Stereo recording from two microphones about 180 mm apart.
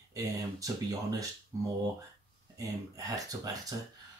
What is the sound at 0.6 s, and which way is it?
Speech, 20° right (ahead or behind).